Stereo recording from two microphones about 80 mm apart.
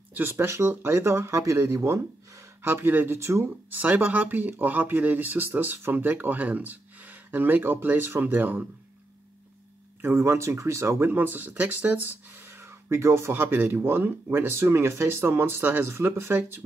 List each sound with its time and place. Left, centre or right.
0.1 s speech: right
3.4 s speech: right
10.0 s speech: right